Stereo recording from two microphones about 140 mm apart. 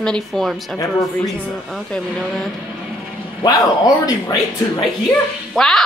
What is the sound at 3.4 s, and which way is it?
Speech, 25° left (ahead or behind).